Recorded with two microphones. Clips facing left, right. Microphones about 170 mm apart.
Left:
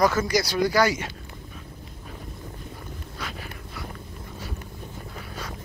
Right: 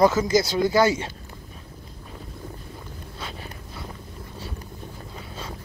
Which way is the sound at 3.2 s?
25° right (ahead or behind).